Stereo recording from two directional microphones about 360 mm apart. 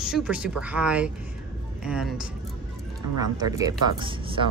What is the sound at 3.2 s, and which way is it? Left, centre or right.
Speech, centre.